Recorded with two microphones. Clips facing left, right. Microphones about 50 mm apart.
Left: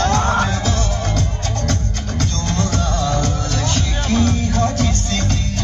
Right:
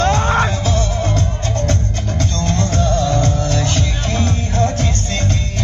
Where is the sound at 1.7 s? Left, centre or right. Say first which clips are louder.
Right 3 dB; right.